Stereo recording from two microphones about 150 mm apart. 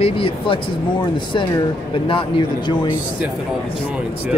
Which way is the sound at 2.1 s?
30° left (ahead or behind).